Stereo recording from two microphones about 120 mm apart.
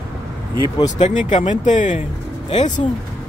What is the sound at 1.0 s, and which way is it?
Speech, 75° left (ahead or behind).